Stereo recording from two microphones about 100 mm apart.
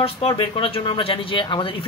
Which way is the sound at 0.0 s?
70° left (ahead or behind).